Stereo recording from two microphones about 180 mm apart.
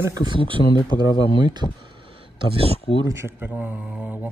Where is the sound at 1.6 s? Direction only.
30° left (ahead or behind).